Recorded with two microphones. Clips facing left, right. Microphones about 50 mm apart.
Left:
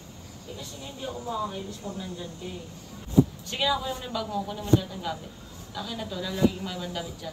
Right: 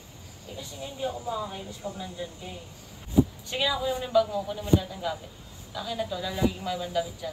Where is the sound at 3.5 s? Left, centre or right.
Centre.